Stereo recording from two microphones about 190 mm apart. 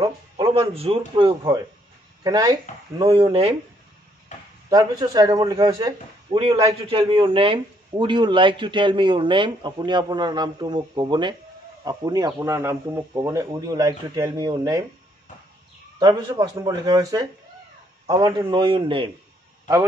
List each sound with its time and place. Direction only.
0.4 s a man's voice: 30° right (ahead or behind)
4.3 s chop: 40° left (ahead or behind)
4.6 s a man's voice: 20° right (ahead or behind)
16.0 s a man's voice: 20° right (ahead or behind)